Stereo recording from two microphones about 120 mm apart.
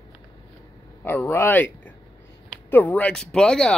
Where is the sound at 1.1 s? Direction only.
20° left (ahead or behind).